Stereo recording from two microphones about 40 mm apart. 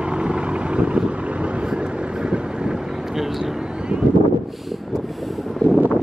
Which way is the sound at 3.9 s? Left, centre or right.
Right.